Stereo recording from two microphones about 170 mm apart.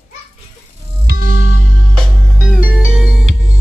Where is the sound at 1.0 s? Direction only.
55° right (ahead or behind).